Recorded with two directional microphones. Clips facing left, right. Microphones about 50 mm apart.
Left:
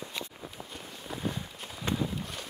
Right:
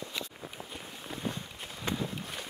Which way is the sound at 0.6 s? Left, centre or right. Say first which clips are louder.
Even; centre.